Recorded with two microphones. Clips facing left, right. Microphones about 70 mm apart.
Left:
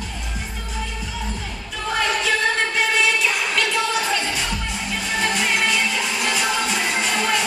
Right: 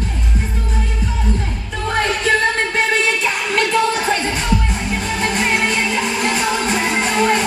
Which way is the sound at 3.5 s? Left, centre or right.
Right.